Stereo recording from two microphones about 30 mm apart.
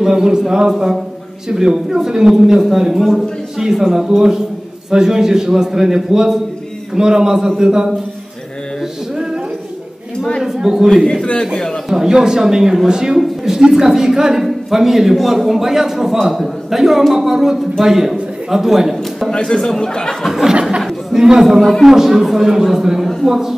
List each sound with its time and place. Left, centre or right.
0.0 s a man's voice: centre
9.1 s a sound: centre
10.4 s a woman's voice: centre
11.9 s a man's voice: centre
19.3 s speech: left
19.6 s speech: centre
21.2 s a man's voice: right
21.5 s a man's voice: centre